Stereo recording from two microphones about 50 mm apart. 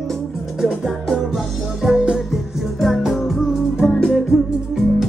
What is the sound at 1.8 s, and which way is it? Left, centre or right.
Music, centre.